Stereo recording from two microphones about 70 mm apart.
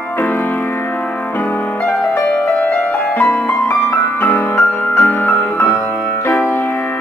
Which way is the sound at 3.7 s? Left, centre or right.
Left.